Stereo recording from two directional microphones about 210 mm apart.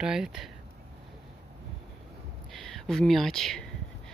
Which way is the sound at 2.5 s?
Centre (ahead or behind).